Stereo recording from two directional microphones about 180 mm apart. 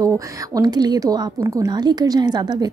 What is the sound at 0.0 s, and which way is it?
Speech, 20° right (ahead or behind).